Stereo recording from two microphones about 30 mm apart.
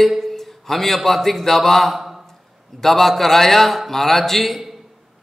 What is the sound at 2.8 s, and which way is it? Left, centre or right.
A man's voice, centre.